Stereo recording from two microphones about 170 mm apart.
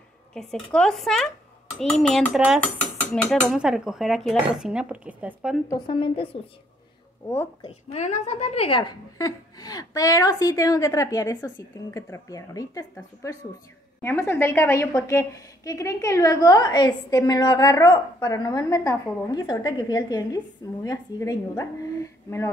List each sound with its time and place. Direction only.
0.3 s speech: centre (ahead or behind)
5.7 s a woman's voice: 30° left (ahead or behind)
7.6 s a woman's voice: 40° left (ahead or behind); by 22.5 s 15° left (ahead or behind)